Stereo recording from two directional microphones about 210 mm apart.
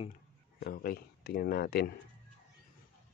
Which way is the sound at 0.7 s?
45° left (ahead or behind).